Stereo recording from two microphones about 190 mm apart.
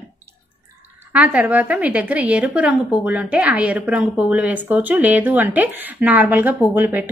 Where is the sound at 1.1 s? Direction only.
5° right (ahead or behind).